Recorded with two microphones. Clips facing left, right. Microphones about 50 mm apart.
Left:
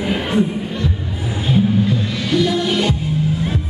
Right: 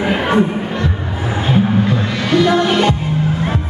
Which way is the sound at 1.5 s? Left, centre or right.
Right.